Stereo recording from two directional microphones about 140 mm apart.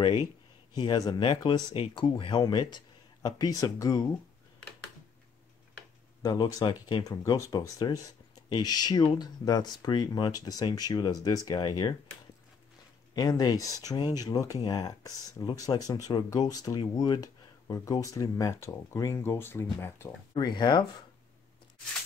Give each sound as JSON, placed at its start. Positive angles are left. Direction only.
{"t": 0.0, "sound": "speech", "side_deg": 35}
{"t": 6.2, "sound": "speech", "side_deg": 25}
{"t": 13.1, "sound": "speech", "side_deg": 30}
{"t": 20.3, "sound": "speech", "side_deg": 30}